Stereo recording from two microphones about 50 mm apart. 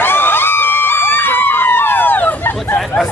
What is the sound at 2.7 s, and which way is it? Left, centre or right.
Speech, centre.